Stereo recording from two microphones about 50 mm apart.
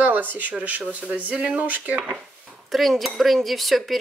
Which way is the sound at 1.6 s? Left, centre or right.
Right.